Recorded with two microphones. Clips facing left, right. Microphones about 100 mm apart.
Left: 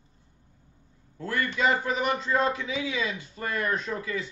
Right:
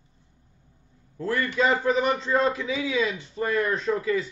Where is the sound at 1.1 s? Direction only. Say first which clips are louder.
Right 4 dB; 30° right (ahead or behind).